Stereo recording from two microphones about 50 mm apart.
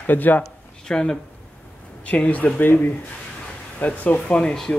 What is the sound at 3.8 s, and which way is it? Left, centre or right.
Speech, left.